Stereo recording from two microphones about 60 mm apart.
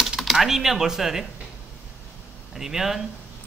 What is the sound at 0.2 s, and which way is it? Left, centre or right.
Speech, centre.